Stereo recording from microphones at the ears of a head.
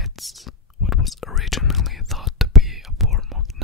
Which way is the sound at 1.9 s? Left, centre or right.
Centre.